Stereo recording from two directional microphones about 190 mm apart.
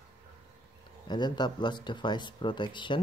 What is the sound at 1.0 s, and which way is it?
Speech, 25° left (ahead or behind).